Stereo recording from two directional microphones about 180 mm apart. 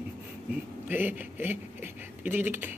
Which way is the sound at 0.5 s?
10° right (ahead or behind).